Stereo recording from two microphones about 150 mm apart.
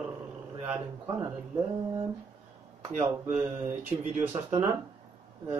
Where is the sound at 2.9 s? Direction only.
55° right (ahead or behind).